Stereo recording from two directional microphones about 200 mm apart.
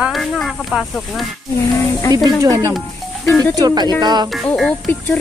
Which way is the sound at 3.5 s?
20° right (ahead or behind).